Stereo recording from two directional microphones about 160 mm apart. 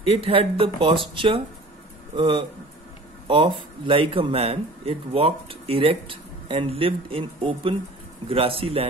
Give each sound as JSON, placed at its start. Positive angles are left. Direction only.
{"t": 0.0, "sound": "speech", "side_deg": -35}